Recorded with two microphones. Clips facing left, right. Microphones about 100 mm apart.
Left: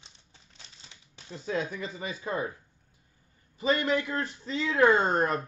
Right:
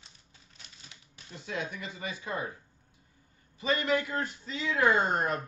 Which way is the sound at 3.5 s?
35° left (ahead or behind).